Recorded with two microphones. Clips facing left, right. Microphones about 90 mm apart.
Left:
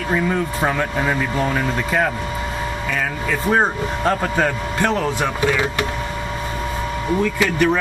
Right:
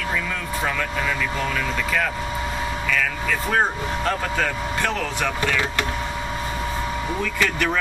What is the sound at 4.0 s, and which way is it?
Speech, 30° left (ahead or behind).